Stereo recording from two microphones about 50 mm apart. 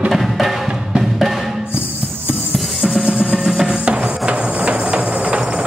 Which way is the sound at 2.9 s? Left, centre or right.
Right.